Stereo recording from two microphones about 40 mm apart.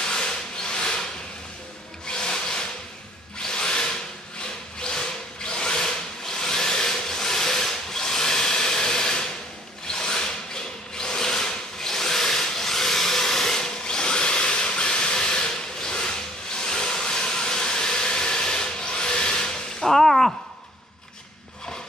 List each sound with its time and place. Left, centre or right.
0.0 s wood: centre
2.0 s music: centre
3.4 s tools: centre
4.8 s tools: centre
9.8 s a sound: centre
19.9 s a sound: centre